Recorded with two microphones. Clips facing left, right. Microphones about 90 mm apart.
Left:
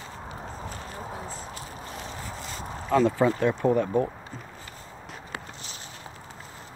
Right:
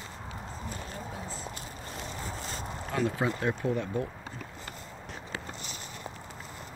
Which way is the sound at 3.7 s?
45° left (ahead or behind).